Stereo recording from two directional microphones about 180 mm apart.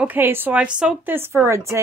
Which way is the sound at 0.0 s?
10° right (ahead or behind).